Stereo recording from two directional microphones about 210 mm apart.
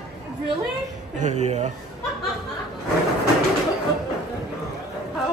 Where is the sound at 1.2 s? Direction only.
35° right (ahead or behind).